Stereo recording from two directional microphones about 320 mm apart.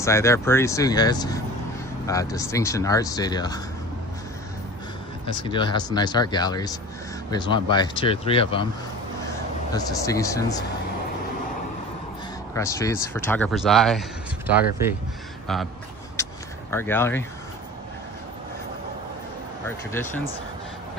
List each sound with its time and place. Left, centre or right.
0.0 s speech: centre
5.2 s speech: centre
9.8 s speech: centre
12.5 s speech: centre
16.7 s speech: centre
19.9 s speech: centre